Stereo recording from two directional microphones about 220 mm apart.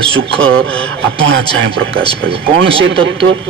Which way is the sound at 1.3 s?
60° right (ahead or behind).